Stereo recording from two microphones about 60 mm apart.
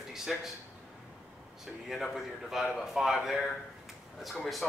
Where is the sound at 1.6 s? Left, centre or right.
Centre.